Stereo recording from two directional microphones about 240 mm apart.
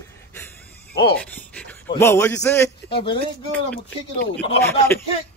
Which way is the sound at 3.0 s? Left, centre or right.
Left.